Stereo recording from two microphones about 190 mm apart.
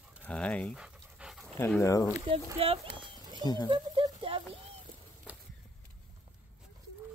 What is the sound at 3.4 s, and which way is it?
Speech, 20° left (ahead or behind).